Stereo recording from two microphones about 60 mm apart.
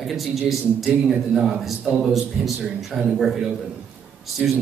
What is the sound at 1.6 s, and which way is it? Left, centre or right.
A man's voice, centre.